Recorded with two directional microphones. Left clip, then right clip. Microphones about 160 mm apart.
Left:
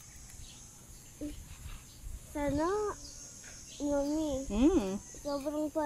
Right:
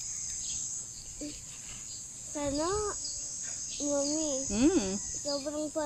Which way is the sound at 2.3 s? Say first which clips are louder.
Even; 45° left (ahead or behind).